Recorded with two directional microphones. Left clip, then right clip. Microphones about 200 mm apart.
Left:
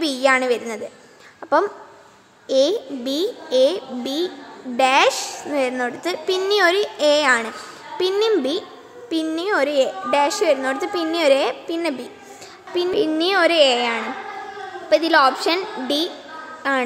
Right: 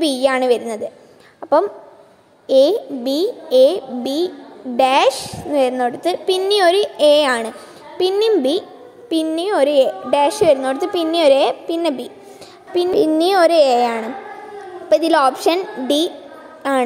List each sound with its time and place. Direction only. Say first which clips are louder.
0.0 s a woman's voice: right 2 dB; 10° right (ahead or behind)
1.4 s a sound: right 3 dB; 5° right (ahead or behind)
2.4 s a woman's voice: right 5 dB; 10° right (ahead or behind)